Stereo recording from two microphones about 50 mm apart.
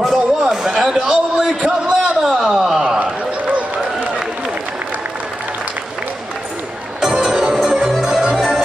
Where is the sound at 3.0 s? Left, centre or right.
Right.